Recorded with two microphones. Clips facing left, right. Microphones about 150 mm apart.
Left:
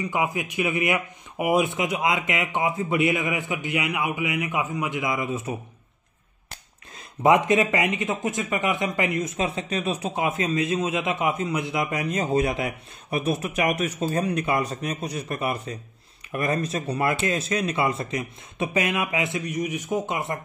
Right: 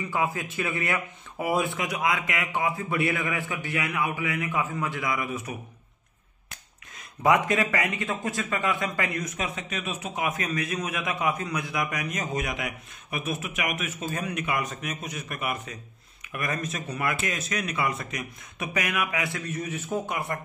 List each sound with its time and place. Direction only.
0.0 s a man's voice: 15° left (ahead or behind)
7.2 s a man's voice: 20° left (ahead or behind)